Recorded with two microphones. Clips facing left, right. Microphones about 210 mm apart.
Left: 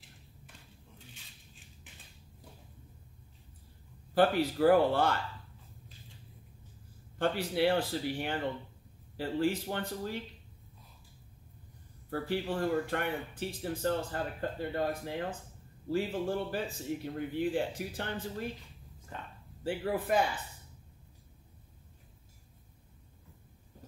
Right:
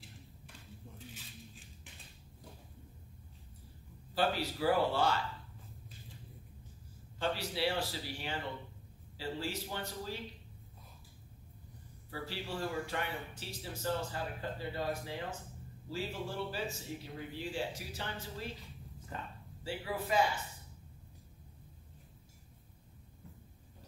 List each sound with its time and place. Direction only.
0.9 s a sound: centre (ahead or behind)
4.1 s speech: 55° left (ahead or behind)
7.2 s speech: 55° left (ahead or behind)
12.1 s speech: 55° left (ahead or behind)
19.1 s speech: 5° right (ahead or behind)
19.6 s speech: 55° left (ahead or behind)